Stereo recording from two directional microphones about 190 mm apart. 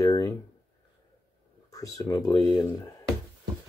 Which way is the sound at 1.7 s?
20° left (ahead or behind).